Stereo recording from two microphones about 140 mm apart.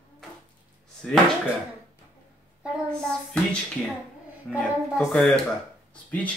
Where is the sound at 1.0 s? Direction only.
5° left (ahead or behind).